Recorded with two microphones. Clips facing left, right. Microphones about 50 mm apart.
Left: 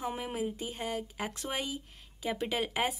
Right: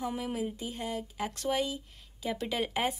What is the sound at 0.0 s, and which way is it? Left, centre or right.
Speech, left.